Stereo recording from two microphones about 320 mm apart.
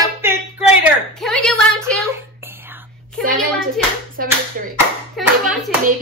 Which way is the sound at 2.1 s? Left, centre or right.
Centre.